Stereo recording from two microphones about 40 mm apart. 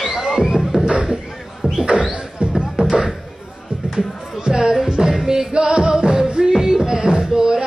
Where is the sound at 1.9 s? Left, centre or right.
Right.